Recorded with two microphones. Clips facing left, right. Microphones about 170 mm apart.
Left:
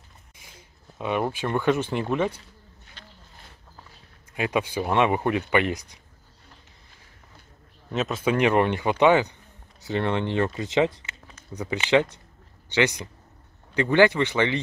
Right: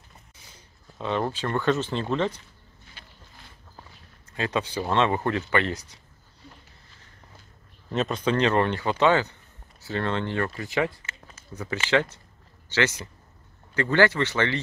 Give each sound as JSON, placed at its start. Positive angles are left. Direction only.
{"t": 0.4, "sound": "speech", "side_deg": 10}
{"t": 3.0, "sound": "a sound", "side_deg": -10}
{"t": 4.3, "sound": "speech", "side_deg": 10}
{"t": 7.9, "sound": "speech", "side_deg": 0}